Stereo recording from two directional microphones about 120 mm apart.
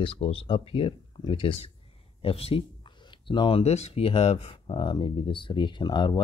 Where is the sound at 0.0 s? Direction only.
45° left (ahead or behind).